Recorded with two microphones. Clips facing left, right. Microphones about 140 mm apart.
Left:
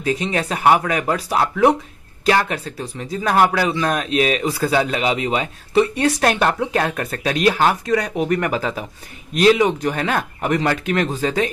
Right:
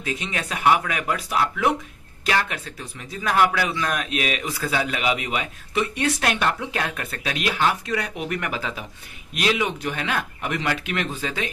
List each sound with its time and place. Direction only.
0.0 s a man's voice: 35° left (ahead or behind)